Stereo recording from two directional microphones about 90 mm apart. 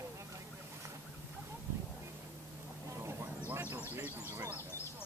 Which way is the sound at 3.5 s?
25° right (ahead or behind).